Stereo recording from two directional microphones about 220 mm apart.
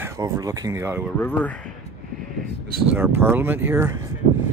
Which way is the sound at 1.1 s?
10° left (ahead or behind).